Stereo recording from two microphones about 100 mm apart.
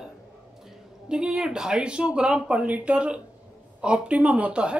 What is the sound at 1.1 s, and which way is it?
Speech, 10° right (ahead or behind).